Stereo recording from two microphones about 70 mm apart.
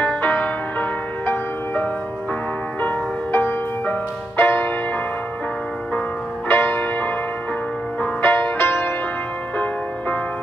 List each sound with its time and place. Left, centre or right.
0.0 s music: left
6.5 s music: left